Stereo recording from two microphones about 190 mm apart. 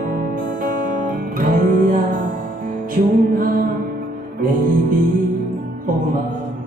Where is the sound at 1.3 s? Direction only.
45° right (ahead or behind).